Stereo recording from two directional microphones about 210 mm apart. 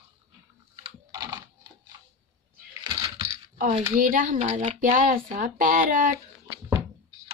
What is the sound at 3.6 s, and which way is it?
Speech, 35° right (ahead or behind).